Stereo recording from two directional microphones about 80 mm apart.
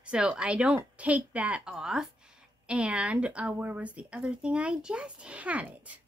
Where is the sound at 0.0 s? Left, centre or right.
Centre.